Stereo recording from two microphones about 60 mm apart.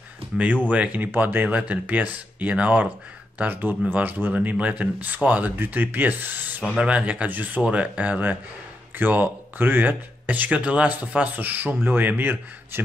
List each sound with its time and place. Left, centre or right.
0.7 s speech: right
1.5 s speech: right
6.8 s speech: right